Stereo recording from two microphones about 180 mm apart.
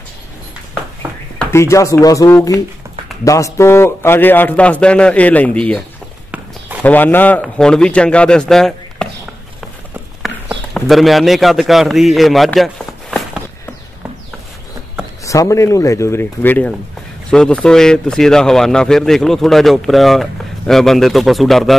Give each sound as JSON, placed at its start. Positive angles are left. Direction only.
{"t": 1.5, "sound": "a man's voice", "side_deg": 15}
{"t": 6.8, "sound": "a man's voice", "side_deg": 10}
{"t": 10.7, "sound": "a man's voice", "side_deg": 0}
{"t": 15.2, "sound": "a man's voice", "side_deg": 15}